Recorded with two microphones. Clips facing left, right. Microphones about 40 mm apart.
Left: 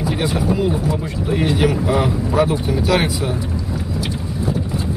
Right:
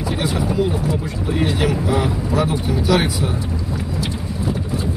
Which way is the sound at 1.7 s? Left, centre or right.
Centre.